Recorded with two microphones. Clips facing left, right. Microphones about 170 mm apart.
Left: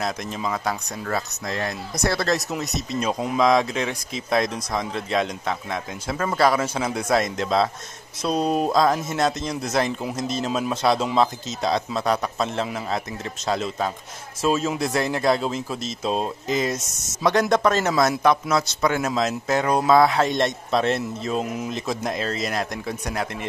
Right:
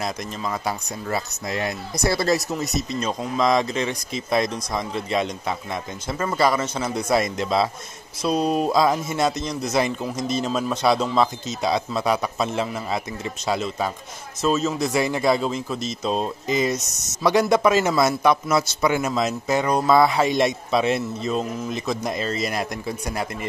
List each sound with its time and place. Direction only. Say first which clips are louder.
0.0 s a man's voice: left 1 dB; centre (ahead or behind)
14.4 s speech: right 1 dB; 10° left (ahead or behind)
14.9 s a man's voice: right 1 dB; 5° right (ahead or behind)